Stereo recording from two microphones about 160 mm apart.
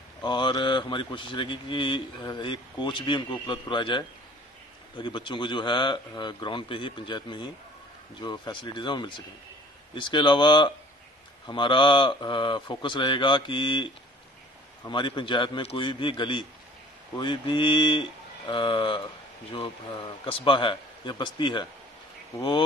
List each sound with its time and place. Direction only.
0.2 s a man's voice: 30° left (ahead or behind)